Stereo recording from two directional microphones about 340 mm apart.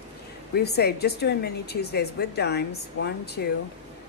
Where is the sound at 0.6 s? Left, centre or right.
Left.